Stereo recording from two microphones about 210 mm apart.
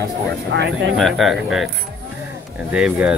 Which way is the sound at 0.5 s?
55° right (ahead or behind).